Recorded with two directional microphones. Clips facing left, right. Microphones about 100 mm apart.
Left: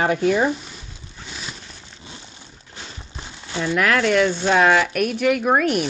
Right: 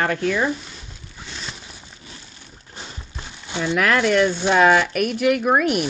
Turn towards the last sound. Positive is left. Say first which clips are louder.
# even
turn(degrees=-5)  # may be behind; listen again after turning